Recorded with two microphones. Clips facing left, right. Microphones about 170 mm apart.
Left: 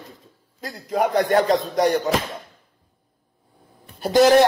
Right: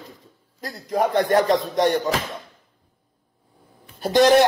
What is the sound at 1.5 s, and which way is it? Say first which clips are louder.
Speech: even; centre (ahead or behind).